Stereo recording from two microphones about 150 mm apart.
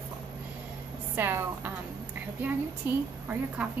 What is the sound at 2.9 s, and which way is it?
Speech, 10° right (ahead or behind).